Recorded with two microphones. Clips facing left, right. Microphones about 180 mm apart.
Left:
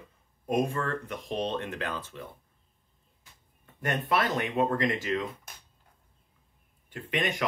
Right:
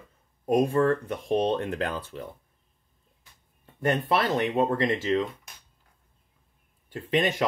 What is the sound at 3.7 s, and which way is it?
Speech, 30° right (ahead or behind).